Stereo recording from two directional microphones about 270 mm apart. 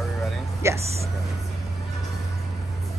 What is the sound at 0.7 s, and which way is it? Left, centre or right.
Speech, right.